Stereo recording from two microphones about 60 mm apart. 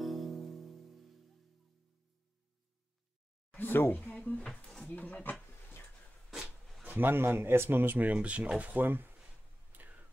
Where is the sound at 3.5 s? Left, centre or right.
Left.